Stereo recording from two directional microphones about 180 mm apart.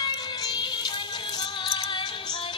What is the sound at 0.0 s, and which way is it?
Music, 25° left (ahead or behind).